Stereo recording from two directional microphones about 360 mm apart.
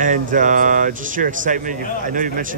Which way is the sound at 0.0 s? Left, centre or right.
Right.